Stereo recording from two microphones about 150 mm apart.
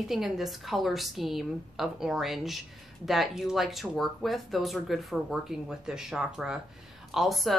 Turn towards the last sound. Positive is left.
turn(degrees=0)  # may be behind; listen again after turning